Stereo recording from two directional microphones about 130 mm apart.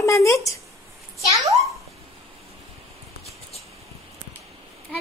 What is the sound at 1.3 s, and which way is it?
Speech, 25° right (ahead or behind).